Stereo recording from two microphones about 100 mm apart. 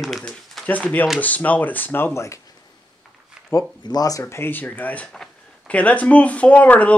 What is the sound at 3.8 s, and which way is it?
Speech, 40° left (ahead or behind).